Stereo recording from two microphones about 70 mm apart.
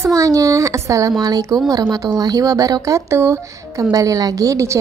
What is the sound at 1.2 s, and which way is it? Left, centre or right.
A woman's voice, right.